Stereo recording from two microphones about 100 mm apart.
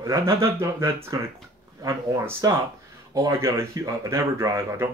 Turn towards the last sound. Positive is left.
turn(degrees=-30)  # may be behind; listen again after turning